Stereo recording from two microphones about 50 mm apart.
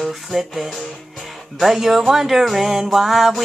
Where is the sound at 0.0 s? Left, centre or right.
Centre.